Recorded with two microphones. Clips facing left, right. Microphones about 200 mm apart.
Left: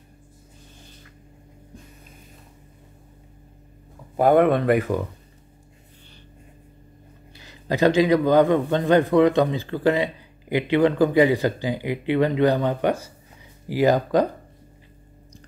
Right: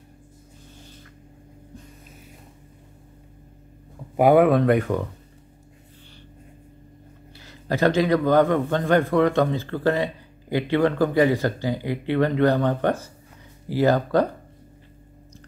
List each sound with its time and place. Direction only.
4.2 s speech: 5° right (ahead or behind)
7.3 s a man's voice: 15° left (ahead or behind)